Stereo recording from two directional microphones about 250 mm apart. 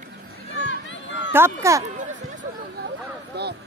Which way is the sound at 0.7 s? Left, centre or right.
Left.